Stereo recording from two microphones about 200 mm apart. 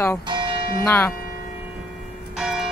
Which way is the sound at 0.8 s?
10° left (ahead or behind).